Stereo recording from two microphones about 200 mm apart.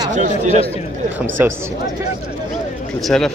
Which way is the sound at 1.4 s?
10° right (ahead or behind).